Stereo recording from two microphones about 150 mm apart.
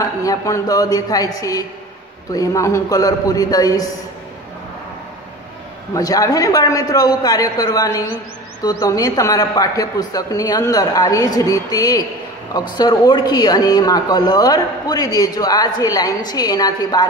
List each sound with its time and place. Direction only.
0.0 s speech: 25° left (ahead or behind)
5.9 s speech: 25° left (ahead or behind)